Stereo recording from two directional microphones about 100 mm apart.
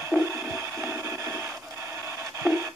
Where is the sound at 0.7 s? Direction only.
25° right (ahead or behind).